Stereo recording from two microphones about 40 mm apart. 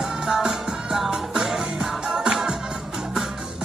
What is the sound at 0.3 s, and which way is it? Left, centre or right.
Music, centre.